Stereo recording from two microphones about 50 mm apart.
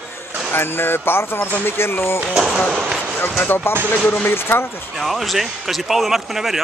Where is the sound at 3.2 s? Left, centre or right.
Left.